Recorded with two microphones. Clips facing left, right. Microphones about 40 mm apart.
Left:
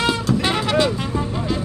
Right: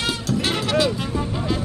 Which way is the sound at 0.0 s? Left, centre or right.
Left.